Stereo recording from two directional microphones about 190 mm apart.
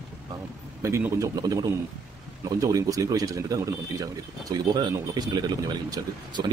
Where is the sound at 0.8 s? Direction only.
15° right (ahead or behind).